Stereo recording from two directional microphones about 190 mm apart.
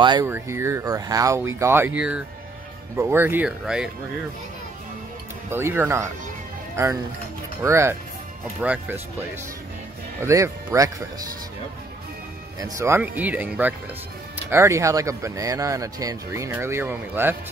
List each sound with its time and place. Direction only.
0.0 s speech: 20° right (ahead or behind); by 3.9 s 5° right (ahead or behind)
5.5 s speech: 15° right (ahead or behind)
10.2 s speech: 15° right (ahead or behind)
12.5 s speech: 20° right (ahead or behind)